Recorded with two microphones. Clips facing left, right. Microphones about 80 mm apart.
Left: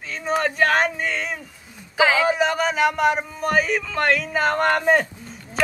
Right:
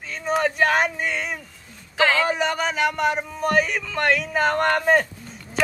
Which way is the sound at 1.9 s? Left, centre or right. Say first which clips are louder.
Left 2 dB; centre.